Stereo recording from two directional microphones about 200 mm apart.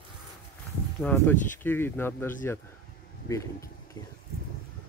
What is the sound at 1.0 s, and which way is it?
Speech, 10° left (ahead or behind).